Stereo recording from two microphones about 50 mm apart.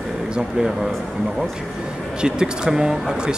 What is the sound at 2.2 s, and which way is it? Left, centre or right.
A man's voice, centre.